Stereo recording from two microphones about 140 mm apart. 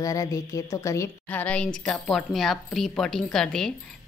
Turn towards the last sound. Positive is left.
turn(degrees=5)  # may be behind; listen again after turning